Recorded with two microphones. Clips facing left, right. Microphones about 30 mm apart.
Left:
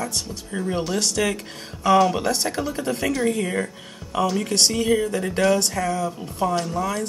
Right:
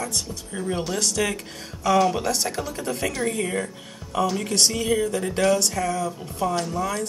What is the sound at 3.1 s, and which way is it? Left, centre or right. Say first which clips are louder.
Speech: left 3 dB; centre.